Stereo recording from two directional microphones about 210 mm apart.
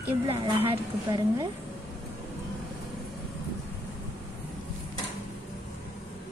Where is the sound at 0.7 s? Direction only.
15° right (ahead or behind).